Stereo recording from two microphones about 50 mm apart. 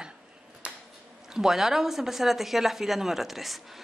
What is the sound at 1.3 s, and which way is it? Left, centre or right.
A woman's voice, centre.